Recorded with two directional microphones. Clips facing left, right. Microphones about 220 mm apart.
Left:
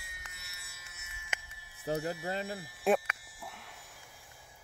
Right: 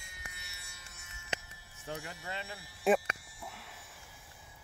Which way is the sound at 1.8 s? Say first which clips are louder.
Left 9 dB; 35° left (ahead or behind).